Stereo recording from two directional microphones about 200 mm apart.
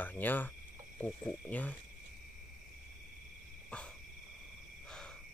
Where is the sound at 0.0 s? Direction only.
10° left (ahead or behind).